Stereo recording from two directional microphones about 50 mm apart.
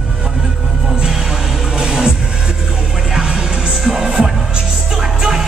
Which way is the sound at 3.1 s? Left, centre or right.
Centre.